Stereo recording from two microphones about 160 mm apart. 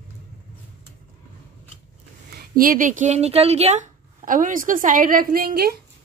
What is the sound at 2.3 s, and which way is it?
Speech, 65° right (ahead or behind).